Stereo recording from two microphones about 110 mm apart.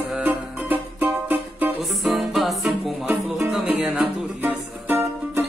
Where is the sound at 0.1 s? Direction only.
10° right (ahead or behind).